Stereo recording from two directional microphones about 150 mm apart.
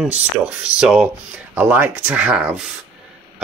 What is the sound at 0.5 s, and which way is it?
Speech, 5° right (ahead or behind).